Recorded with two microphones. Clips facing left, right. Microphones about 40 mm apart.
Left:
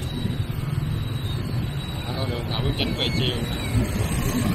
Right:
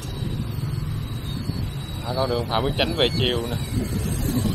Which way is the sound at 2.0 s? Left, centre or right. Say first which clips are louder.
Right 7 dB; left.